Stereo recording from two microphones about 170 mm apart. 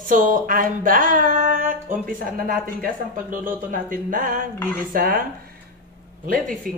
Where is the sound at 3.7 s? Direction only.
50° right (ahead or behind).